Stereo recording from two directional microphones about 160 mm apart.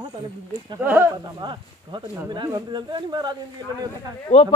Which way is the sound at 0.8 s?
10° right (ahead or behind).